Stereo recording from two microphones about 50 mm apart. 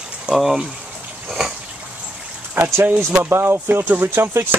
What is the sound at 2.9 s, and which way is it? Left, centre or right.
Speech, right.